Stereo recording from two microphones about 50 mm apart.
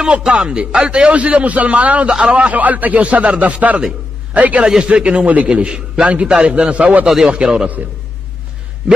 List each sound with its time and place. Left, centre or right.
0.0 s a man's voice: centre
2.0 s speech: centre
2.3 s a man's voice: right
4.6 s a man's voice: centre
7.1 s speech: centre
7.3 s a man's voice: right